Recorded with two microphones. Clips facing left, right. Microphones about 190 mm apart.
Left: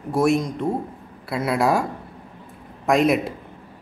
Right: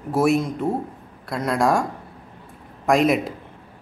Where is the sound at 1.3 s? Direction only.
5° left (ahead or behind).